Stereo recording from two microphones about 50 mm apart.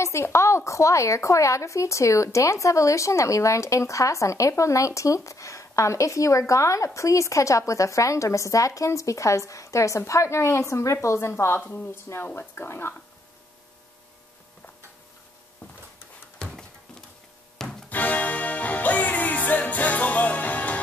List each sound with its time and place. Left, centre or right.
0.0 s speech: left
16.3 s a sound: centre
17.8 s music: left